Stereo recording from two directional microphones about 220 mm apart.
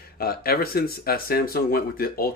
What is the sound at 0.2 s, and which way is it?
Speech, 45° left (ahead or behind).